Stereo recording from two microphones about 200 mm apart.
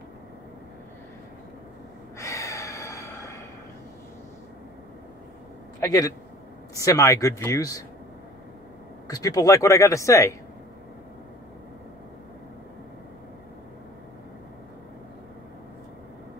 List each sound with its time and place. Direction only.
2.1 s gasp: 15° left (ahead or behind)
5.8 s a man's voice: 20° left (ahead or behind)
9.0 s speech: 20° left (ahead or behind)